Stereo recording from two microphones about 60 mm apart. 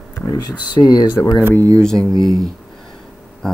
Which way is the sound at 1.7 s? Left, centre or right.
Centre.